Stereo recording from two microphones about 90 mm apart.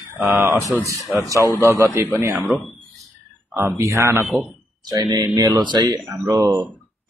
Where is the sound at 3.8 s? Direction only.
30° right (ahead or behind).